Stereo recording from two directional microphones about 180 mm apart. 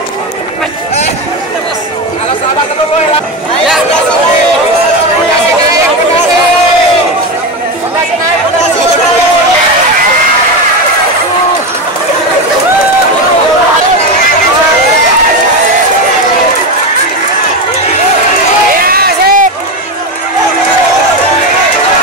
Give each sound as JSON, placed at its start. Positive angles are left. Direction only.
{"t": 18.8, "sound": "crowd", "side_deg": -55}